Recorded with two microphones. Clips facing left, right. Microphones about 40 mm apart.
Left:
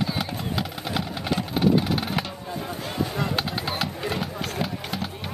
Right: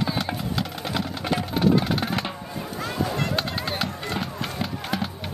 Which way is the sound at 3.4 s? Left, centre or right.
Centre.